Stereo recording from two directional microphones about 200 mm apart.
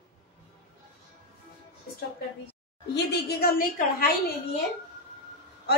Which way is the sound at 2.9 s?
55° left (ahead or behind).